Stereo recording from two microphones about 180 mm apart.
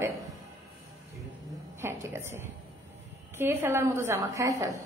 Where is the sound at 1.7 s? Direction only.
15° right (ahead or behind).